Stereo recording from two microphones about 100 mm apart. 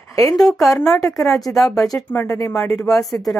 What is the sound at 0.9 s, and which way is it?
Speech, 30° left (ahead or behind).